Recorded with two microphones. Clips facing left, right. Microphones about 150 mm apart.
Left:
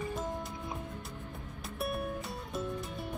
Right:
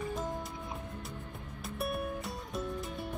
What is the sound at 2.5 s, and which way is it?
Music, centre (ahead or behind).